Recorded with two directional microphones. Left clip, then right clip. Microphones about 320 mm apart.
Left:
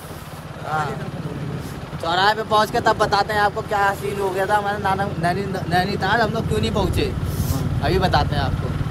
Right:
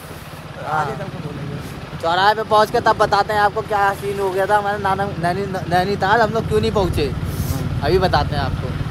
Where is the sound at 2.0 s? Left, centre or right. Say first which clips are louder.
Right 3 dB; centre.